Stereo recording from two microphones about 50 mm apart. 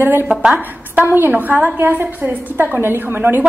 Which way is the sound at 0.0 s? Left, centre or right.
Right.